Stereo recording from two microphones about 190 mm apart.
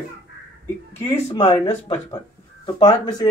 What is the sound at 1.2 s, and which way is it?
Speech, 35° left (ahead or behind).